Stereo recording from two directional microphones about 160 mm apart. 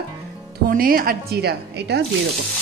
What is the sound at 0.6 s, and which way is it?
Speech, 65° right (ahead or behind).